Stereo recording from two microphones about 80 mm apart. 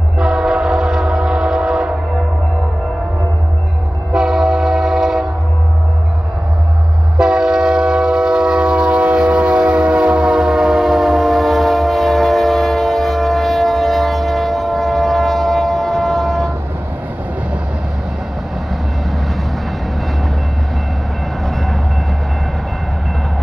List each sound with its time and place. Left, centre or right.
0.2 s train: centre
4.1 s train: centre
7.2 s train: centre